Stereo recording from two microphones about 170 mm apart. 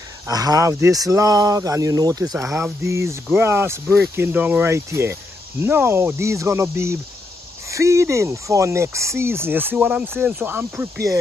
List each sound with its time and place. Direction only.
0.3 s speech: 20° right (ahead or behind)